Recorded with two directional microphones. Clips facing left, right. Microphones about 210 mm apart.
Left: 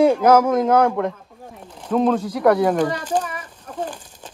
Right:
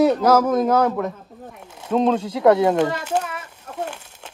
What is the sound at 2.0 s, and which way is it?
Speech, 25° right (ahead or behind).